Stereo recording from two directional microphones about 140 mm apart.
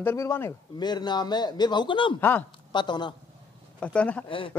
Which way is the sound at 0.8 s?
30° left (ahead or behind).